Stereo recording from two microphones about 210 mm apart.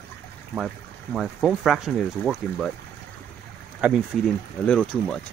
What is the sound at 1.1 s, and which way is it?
Speech, 5° right (ahead or behind).